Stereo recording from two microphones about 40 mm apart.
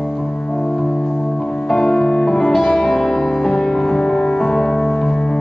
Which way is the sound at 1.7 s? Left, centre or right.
Centre.